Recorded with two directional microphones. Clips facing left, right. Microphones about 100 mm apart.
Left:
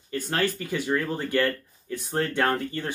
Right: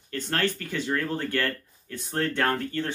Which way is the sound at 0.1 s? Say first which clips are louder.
Left 1 dB; 10° left (ahead or behind).